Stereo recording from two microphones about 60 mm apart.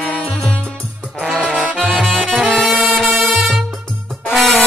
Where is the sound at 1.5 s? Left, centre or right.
Centre.